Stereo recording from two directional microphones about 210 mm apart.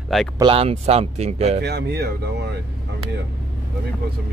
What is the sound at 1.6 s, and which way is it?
Speech, 50° right (ahead or behind).